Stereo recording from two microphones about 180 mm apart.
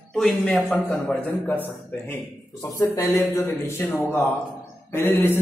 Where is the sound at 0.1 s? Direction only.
5° left (ahead or behind).